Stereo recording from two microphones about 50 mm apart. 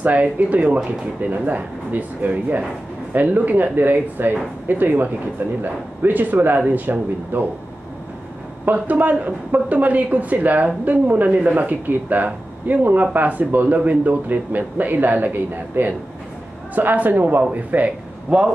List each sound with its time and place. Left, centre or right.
0.0 s a man's voice: right
8.7 s a man's voice: right